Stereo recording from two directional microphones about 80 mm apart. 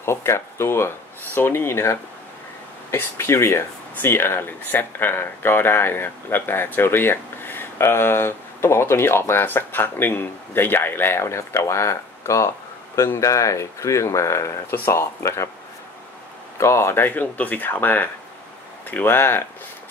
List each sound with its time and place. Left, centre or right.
0.0 s speech: left
16.5 s speech: left